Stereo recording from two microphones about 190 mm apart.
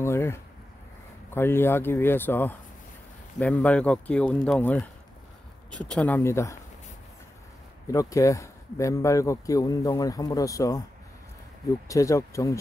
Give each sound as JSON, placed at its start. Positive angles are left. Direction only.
{"t": 0.0, "sound": "a sound", "side_deg": 15}
{"t": 1.3, "sound": "speech", "side_deg": 10}
{"t": 5.9, "sound": "speech", "side_deg": 10}
{"t": 7.9, "sound": "speech", "side_deg": 15}
{"t": 11.9, "sound": "speech", "side_deg": 15}